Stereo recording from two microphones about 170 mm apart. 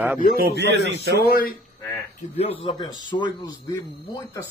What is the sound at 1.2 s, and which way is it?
Speech, 60° left (ahead or behind).